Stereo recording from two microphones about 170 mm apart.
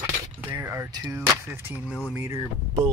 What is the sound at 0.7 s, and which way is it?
Speech, 20° right (ahead or behind).